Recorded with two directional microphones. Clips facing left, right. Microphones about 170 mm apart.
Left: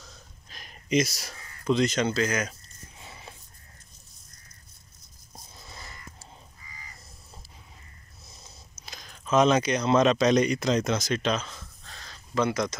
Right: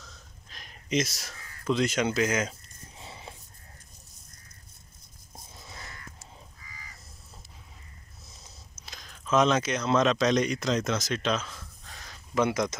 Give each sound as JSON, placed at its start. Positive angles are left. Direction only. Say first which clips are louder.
{"t": 0.5, "sound": "speech", "louder": "left 4 dB", "side_deg": 0}
{"t": 3.0, "sound": "a sound", "louder": "right 2 dB", "side_deg": -25}
{"t": 8.7, "sound": "speech", "louder": "left 2 dB", "side_deg": 0}